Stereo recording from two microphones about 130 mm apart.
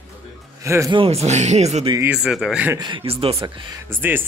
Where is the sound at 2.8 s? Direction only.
40° right (ahead or behind).